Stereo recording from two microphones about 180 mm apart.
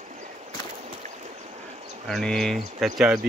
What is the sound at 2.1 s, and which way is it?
Speech, 5° left (ahead or behind).